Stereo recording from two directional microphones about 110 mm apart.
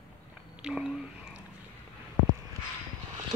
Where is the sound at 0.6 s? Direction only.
5° right (ahead or behind).